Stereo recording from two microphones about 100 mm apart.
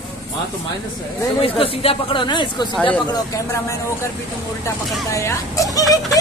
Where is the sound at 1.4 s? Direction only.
70° left (ahead or behind); by 2.7 s 50° left (ahead or behind).